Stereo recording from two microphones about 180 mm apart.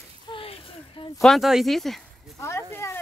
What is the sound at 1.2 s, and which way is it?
Speech, centre (ahead or behind).